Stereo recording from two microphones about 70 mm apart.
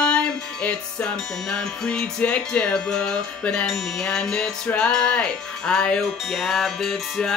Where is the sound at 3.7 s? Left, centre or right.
Centre.